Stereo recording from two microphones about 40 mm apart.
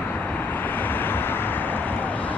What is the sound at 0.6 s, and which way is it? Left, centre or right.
Vehicle, left.